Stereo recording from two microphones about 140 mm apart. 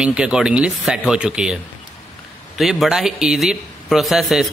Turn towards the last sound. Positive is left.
turn(degrees=0)  # may be behind; listen again after turning